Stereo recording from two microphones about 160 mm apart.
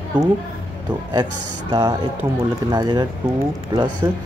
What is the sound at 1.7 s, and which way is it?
Speech, 20° right (ahead or behind).